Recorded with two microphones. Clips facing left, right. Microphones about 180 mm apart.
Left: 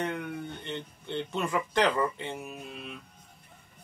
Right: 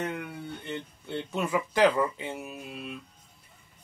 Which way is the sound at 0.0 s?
5° right (ahead or behind).